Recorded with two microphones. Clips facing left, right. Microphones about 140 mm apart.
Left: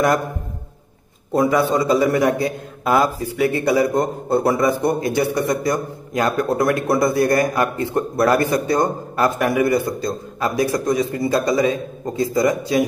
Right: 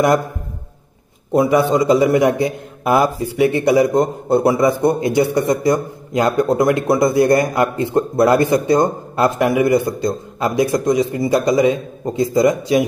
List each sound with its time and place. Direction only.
1.3 s a man's voice: 15° right (ahead or behind)